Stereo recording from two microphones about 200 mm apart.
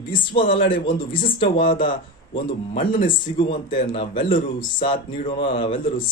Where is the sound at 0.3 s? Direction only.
25° left (ahead or behind).